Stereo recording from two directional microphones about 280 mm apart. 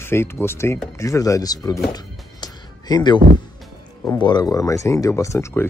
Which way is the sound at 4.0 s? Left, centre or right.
Centre.